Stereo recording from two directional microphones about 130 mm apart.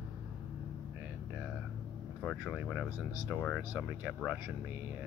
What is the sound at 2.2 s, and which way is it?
Speech, 10° left (ahead or behind).